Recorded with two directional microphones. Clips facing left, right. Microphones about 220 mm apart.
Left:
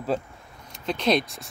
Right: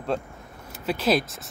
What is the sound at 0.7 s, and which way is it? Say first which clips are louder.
Speech: even; 5° right (ahead or behind).